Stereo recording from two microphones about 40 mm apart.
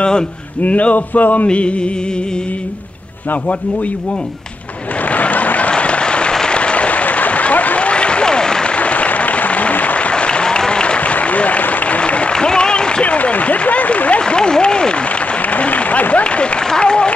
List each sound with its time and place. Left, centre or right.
0.6 s speech: left
1.5 s speech: left
5.1 s a sound: left
5.7 s applause: left
8.7 s applause: left
11.0 s applause: left
12.0 s applause: left
13.0 s a sound: left
14.2 s applause: left
15.5 s applause: left
16.7 s speech: left